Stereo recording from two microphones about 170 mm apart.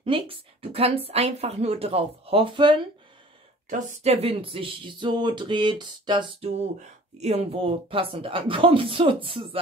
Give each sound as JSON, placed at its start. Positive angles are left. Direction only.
{"t": 0.0, "sound": "speech", "side_deg": -30}
{"t": 3.7, "sound": "speech", "side_deg": -40}